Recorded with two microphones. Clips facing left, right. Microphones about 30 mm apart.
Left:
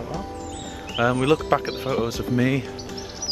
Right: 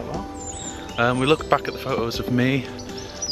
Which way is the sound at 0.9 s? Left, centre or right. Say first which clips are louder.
Right 1 dB; centre.